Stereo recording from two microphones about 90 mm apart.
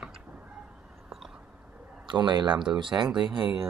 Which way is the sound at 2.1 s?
55° right (ahead or behind).